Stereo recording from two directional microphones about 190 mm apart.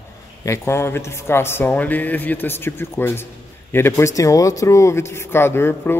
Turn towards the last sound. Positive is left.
turn(degrees=10)  # may be behind; listen again after turning